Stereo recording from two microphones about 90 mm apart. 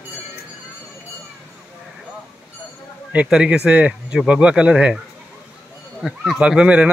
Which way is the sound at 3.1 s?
10° right (ahead or behind).